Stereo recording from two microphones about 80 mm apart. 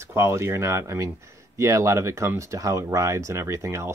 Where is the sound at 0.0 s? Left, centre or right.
Right.